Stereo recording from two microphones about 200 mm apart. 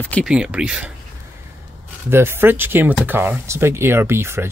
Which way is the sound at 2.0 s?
10° right (ahead or behind).